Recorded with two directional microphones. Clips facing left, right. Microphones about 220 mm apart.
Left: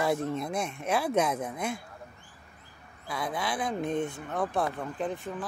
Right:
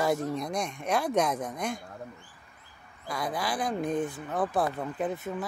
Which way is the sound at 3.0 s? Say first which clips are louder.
Right 1 dB; centre (ahead or behind).